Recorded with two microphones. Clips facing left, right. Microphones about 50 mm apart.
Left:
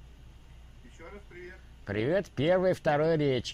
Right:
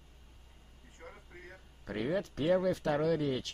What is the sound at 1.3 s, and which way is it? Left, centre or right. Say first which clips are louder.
Speech: left 5 dB; left.